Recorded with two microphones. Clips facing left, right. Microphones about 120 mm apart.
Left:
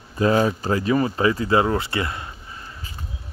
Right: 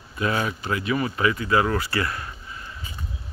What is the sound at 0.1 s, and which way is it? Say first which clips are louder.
Speech: left 7 dB; 35° left (ahead or behind).